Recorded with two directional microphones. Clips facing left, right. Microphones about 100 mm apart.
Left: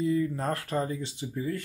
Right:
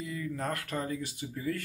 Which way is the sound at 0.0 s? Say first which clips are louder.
Left 8 dB; 30° left (ahead or behind).